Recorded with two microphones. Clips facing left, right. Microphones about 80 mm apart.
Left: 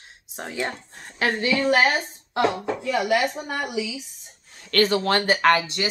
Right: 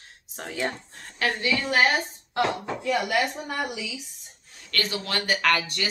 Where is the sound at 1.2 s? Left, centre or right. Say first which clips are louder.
Left 4 dB; left.